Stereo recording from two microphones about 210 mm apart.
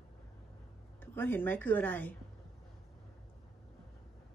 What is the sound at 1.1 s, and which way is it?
Speech, 10° left (ahead or behind).